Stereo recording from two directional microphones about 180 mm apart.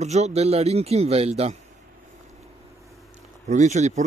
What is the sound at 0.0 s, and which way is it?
Speech, 40° right (ahead or behind).